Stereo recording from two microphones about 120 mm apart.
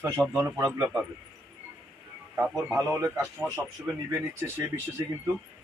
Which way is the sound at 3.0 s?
25° right (ahead or behind).